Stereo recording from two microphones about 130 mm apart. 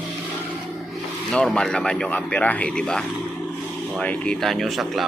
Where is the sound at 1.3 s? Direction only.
5° left (ahead or behind).